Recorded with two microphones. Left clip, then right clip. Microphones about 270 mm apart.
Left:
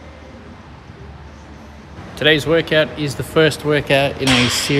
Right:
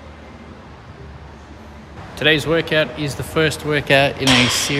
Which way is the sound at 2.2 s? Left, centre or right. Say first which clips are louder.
Left 2 dB; centre.